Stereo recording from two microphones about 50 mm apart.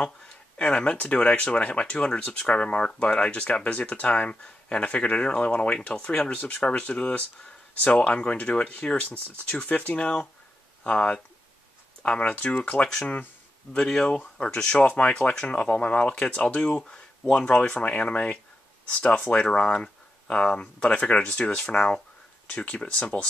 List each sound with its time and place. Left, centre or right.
0.6 s speech: left
12.8 s speech: centre
14.0 s speech: left
17.3 s speech: left
19.2 s speech: centre